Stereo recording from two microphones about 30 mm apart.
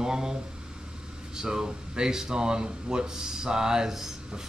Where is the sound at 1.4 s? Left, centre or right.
Right.